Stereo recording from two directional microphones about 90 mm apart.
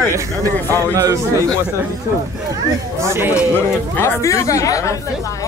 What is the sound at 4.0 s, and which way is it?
Speech, 35° left (ahead or behind).